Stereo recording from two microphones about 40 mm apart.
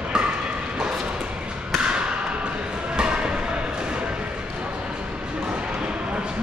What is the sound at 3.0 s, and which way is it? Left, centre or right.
Music, right.